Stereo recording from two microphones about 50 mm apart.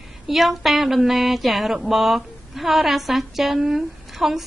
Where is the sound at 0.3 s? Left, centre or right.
Centre.